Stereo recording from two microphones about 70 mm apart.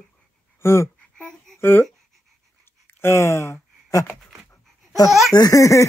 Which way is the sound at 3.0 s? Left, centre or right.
Left.